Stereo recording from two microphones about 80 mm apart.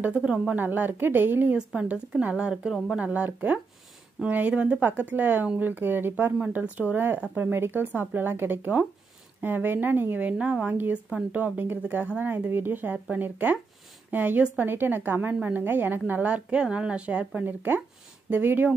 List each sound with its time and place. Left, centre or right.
0.6 s a woman's voice: right
1.6 s a woman's voice: centre
6.3 s a woman's voice: centre
10.3 s a woman's voice: centre